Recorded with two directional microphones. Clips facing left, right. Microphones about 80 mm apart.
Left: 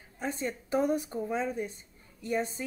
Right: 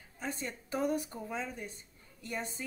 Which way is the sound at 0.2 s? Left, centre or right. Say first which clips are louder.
Left 6 dB; left.